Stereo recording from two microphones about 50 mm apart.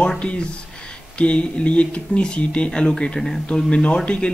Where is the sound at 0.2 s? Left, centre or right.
Left.